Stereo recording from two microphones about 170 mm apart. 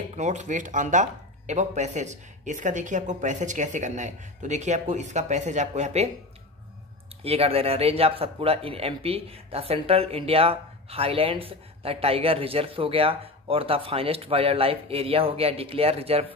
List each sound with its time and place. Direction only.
0.2 s speech: 45° right (ahead or behind)
7.2 s speech: 35° right (ahead or behind)